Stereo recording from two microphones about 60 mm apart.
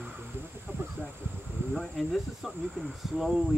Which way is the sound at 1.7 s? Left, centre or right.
Centre.